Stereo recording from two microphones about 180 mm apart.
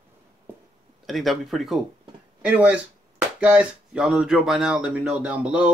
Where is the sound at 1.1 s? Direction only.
Centre (ahead or behind).